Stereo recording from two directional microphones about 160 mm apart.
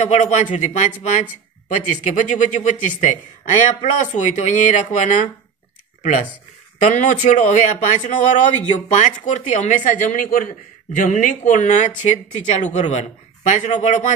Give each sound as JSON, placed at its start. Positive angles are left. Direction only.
{"t": 0.0, "sound": "speech", "side_deg": 45}
{"t": 6.8, "sound": "speech", "side_deg": 50}